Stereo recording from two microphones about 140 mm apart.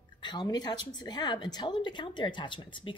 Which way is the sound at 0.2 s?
30° left (ahead or behind).